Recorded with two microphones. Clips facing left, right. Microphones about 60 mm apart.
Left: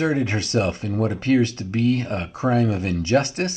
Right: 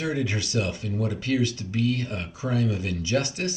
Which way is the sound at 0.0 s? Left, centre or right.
Left.